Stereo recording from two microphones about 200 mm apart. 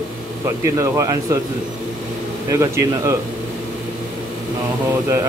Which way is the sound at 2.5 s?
15° right (ahead or behind).